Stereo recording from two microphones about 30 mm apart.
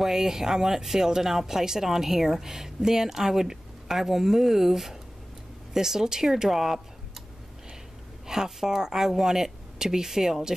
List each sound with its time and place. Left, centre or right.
0.0 s a woman's voice: centre
8.3 s a woman's voice: centre